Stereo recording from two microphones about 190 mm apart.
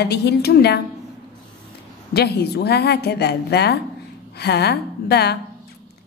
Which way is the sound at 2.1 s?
55° left (ahead or behind).